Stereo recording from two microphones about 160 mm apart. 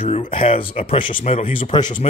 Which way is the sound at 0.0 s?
35° left (ahead or behind).